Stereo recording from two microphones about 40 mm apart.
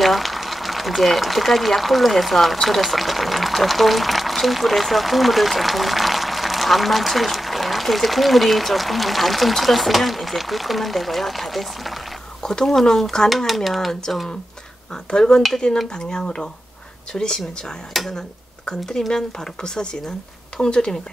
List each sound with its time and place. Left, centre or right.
0.0 s speech: centre
12.4 s speech: centre
15.0 s speech: centre
17.9 s speech: centre
18.7 s speech: centre